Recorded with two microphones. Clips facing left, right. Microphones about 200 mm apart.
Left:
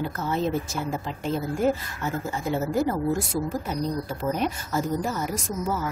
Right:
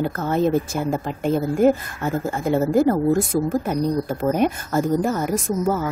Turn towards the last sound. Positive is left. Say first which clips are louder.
# right 7 dB
turn(degrees=-55)  # may be behind; listen again after turning